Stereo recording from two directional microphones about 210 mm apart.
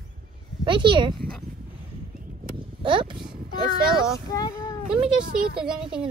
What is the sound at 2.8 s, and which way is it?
Speech, 25° right (ahead or behind).